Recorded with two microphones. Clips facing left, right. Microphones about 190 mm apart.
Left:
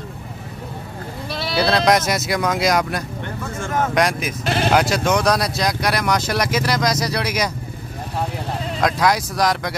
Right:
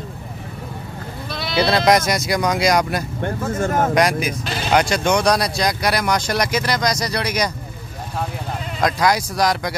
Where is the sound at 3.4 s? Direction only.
45° right (ahead or behind).